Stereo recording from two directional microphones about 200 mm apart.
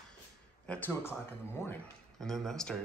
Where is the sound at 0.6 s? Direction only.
5° left (ahead or behind).